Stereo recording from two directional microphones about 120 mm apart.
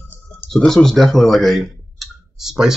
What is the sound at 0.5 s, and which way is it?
Speech, 5° left (ahead or behind).